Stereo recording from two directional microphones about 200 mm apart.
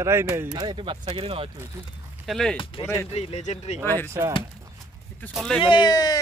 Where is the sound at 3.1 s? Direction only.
30° left (ahead or behind).